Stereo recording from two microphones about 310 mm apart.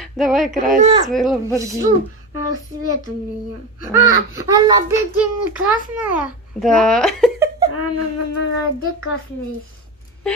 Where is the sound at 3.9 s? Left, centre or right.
Left.